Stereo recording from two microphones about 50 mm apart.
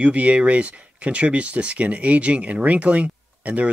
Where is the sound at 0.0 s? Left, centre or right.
Right.